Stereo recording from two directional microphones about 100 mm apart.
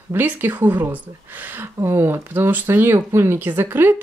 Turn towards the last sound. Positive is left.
turn(degrees=-20)  # may be behind; listen again after turning